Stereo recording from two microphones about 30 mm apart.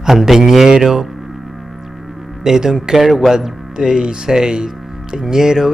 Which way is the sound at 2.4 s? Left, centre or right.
Centre.